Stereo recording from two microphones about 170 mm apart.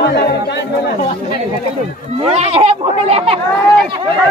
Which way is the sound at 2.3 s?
40° right (ahead or behind).